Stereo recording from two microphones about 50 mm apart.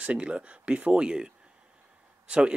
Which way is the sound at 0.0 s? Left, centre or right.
Right.